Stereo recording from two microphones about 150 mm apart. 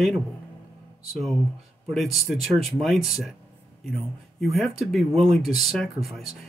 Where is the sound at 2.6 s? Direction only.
Centre (ahead or behind).